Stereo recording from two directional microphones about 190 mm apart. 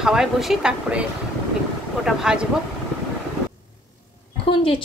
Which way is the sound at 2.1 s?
Centre (ahead or behind).